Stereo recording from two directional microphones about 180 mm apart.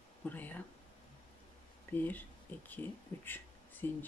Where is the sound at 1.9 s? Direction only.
10° left (ahead or behind).